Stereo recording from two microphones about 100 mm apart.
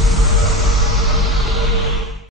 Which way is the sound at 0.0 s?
Centre (ahead or behind).